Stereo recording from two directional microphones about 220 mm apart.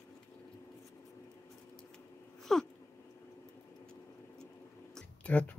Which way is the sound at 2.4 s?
Centre (ahead or behind).